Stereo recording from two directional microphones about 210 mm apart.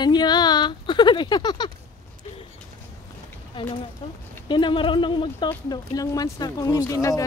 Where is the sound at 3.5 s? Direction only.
25° left (ahead or behind).